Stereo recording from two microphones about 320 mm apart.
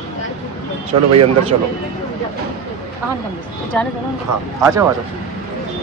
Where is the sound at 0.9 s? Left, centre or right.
Right.